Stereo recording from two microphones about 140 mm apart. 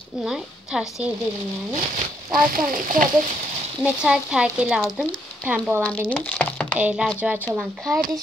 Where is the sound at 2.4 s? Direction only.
80° right.